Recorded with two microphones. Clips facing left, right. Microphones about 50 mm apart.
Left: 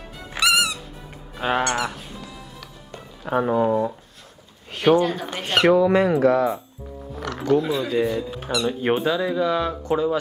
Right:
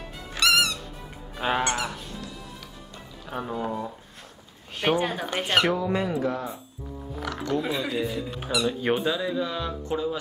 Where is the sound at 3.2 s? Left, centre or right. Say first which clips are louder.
Left 11 dB; left.